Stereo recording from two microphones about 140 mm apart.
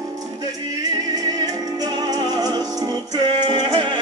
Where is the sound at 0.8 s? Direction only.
25° right (ahead or behind).